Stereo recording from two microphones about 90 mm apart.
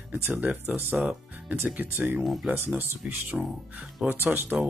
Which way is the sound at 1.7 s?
20° right (ahead or behind).